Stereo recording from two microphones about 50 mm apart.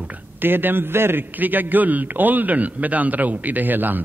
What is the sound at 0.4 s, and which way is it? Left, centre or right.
Speech, right.